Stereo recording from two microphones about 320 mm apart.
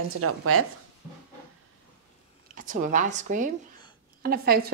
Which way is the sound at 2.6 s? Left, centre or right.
Right.